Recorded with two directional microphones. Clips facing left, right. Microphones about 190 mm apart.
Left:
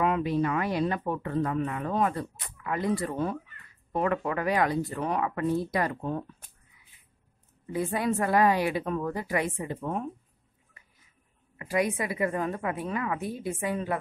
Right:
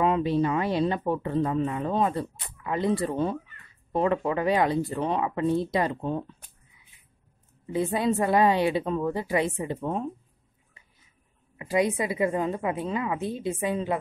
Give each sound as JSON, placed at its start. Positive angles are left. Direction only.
{"t": 0.0, "sound": "speech", "side_deg": -30}
{"t": 7.6, "sound": "speech", "side_deg": -25}
{"t": 11.5, "sound": "a woman's voice", "side_deg": -25}